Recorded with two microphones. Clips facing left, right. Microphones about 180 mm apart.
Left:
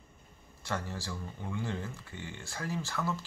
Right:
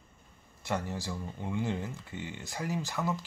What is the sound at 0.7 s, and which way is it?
Speech, 20° right (ahead or behind).